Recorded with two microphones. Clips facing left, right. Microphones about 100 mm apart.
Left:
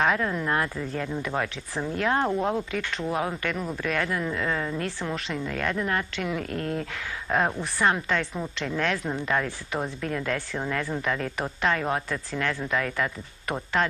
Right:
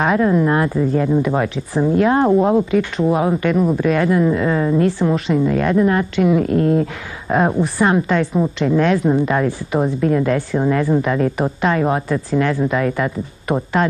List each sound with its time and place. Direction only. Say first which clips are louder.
0.0 s speech: right 10 dB; 15° right (ahead or behind)